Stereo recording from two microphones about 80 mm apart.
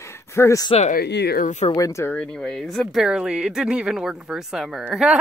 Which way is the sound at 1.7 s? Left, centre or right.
Left.